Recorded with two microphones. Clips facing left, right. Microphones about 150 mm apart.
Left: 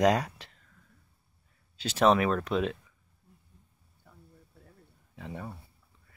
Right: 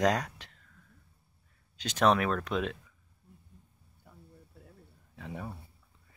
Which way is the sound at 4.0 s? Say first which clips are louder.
Right 1 dB; 5° right (ahead or behind).